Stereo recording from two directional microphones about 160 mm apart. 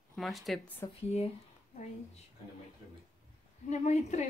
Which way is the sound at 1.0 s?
40° left (ahead or behind).